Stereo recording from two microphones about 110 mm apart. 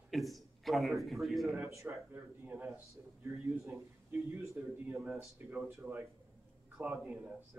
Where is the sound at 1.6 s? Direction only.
25° right (ahead or behind).